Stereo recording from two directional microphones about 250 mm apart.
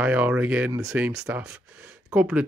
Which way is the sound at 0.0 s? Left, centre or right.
Centre.